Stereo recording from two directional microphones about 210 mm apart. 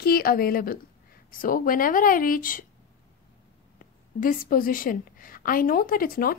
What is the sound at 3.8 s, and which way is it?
A woman's voice, 40° left (ahead or behind).